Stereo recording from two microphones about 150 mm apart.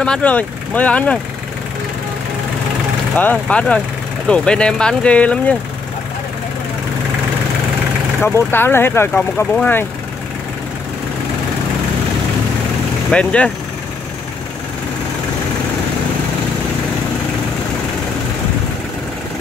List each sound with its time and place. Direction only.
0.0 s speech: 10° left (ahead or behind)
3.2 s speech: 10° left (ahead or behind)
8.2 s speech: 15° left (ahead or behind)
13.1 s speech: 5° left (ahead or behind)